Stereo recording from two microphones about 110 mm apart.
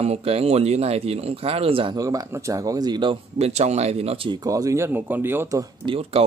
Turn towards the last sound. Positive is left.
turn(degrees=-55)  # may be behind; listen again after turning